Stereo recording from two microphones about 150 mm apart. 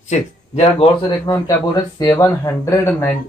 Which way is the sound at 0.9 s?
30° left (ahead or behind).